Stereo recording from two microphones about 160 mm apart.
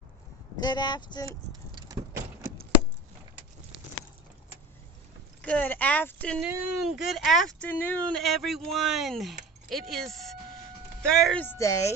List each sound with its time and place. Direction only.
0.6 s speech: 25° left (ahead or behind)
1.7 s vehicle: 30° right (ahead or behind)
5.4 s speech: 10° left (ahead or behind)
6.4 s speech: 5° right (ahead or behind); by 11.9 s 15° left (ahead or behind)